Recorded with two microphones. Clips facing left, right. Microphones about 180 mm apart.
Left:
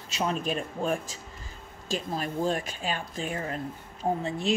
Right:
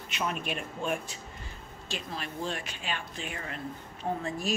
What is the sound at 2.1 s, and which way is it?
Speech, 40° left (ahead or behind).